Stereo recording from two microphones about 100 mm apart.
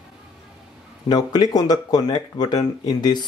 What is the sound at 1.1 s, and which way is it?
Speech, 45° left (ahead or behind).